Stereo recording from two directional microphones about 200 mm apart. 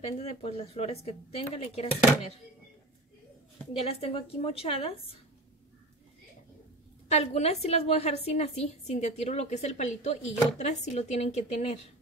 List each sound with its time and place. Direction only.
0.0 s a woman's voice: 30° left (ahead or behind)
3.7 s a woman's voice: 30° left (ahead or behind)
7.1 s a woman's voice: 35° left (ahead or behind)